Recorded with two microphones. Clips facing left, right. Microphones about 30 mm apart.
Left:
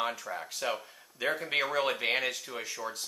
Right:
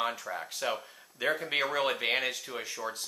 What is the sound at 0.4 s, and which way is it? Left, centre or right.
Speech, centre.